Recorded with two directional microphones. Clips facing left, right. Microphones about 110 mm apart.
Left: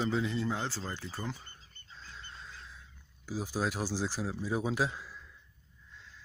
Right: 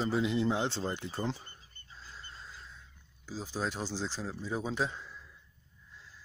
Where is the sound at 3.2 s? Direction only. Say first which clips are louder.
Left 2 dB; 10° left (ahead or behind).